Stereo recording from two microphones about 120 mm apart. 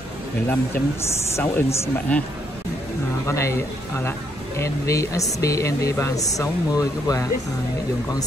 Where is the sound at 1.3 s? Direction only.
20° left (ahead or behind).